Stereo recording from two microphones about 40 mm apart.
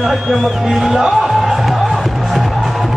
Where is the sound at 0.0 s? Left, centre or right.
Centre.